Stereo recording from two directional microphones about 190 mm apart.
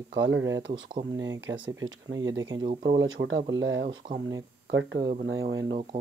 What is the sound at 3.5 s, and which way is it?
Speech, 80° right.